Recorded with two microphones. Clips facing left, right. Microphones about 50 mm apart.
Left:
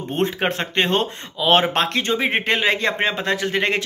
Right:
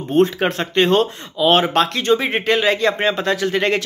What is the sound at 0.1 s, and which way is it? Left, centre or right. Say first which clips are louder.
Speech: right 6 dB; left.